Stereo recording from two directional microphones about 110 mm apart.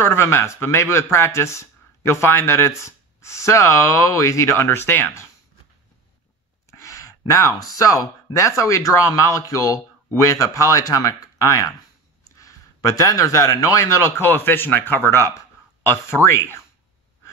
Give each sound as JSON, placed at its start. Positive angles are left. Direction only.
{"t": 0.0, "sound": "a man's voice", "side_deg": 20}
{"t": 6.7, "sound": "a man's voice", "side_deg": 30}